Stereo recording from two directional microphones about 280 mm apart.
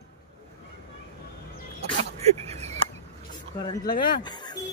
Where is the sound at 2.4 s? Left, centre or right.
Right.